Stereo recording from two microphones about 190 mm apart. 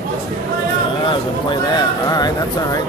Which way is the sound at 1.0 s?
25° left (ahead or behind).